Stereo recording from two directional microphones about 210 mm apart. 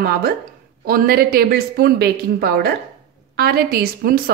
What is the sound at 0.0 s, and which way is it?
A woman's voice, 45° right (ahead or behind).